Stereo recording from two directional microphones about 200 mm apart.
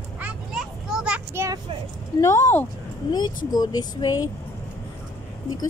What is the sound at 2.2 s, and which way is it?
A child's voice, 15° left (ahead or behind).